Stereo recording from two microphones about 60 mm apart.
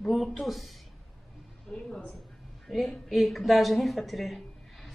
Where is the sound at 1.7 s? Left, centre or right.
Centre.